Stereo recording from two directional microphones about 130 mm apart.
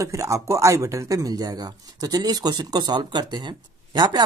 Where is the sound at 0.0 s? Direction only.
25° right (ahead or behind).